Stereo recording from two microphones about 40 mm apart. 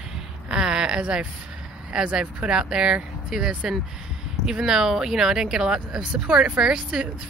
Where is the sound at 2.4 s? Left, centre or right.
Right.